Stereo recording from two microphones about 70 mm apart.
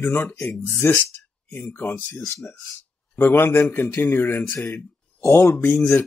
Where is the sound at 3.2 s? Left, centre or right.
Left.